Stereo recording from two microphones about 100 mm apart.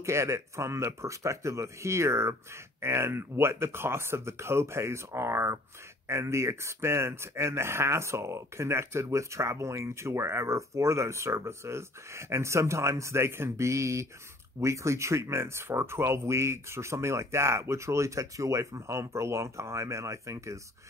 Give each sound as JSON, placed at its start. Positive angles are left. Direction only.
{"t": 0.0, "sound": "speech", "side_deg": -30}